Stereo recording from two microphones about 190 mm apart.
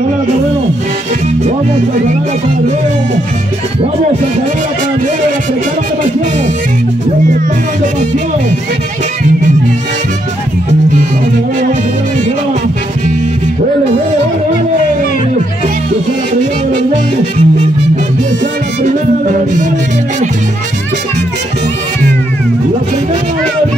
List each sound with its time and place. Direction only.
16.7 s music: 35° right (ahead or behind)
18.8 s music: 40° right (ahead or behind)